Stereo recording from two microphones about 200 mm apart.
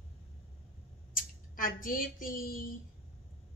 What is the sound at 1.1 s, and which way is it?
Speech, 45° left (ahead or behind).